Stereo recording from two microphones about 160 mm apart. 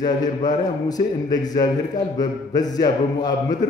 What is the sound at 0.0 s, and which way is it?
A man's voice, 25° left (ahead or behind).